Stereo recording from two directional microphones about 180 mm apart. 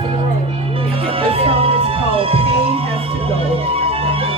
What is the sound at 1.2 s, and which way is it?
Music, 30° right (ahead or behind).